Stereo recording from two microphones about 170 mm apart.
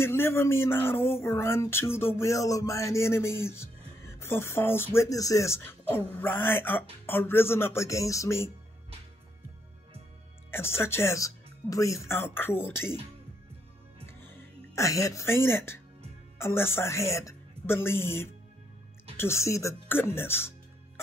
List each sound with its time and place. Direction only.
0.0 s speech: 15° left (ahead or behind)
10.5 s speech: 15° left (ahead or behind)
14.8 s a woman's voice: 20° left (ahead or behind)